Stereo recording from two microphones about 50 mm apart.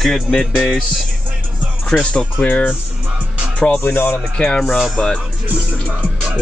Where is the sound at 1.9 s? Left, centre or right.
Centre.